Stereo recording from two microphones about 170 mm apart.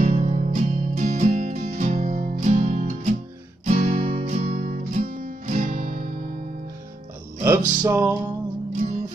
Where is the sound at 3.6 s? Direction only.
40° right (ahead or behind).